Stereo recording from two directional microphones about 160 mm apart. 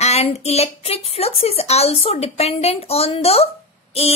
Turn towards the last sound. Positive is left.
turn(degrees=40)  # may be behind; listen again after turning